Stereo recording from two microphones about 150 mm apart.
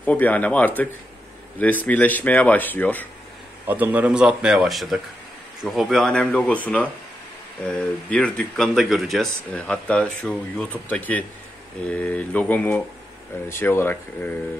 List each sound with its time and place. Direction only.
0.0 s speech: 10° left (ahead or behind)
3.6 s speech: 10° right (ahead or behind); by 14.3 s 15° left (ahead or behind)